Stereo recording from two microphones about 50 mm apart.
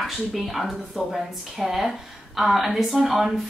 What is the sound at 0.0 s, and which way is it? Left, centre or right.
Speech, centre.